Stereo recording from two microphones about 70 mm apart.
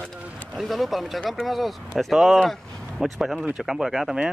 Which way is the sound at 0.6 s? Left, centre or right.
Centre.